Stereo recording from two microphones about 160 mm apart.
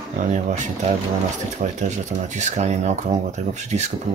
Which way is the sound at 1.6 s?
45° right (ahead or behind).